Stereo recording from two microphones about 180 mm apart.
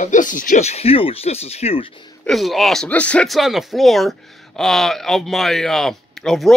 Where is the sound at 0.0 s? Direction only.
45° left (ahead or behind).